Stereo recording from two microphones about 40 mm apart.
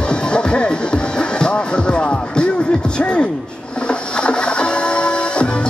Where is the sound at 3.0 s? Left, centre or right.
Left.